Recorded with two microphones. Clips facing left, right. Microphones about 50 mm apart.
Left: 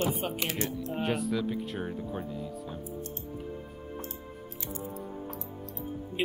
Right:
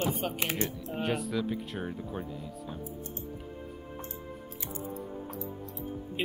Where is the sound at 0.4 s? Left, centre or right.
Right.